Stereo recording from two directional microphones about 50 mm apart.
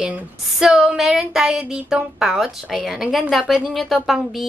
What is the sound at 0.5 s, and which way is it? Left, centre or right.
A woman's voice, centre.